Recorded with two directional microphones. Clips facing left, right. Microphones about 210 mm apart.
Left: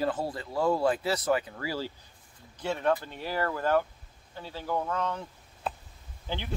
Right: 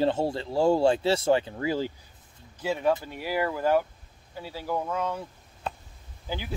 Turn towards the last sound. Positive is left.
turn(degrees=-5)  # may be behind; listen again after turning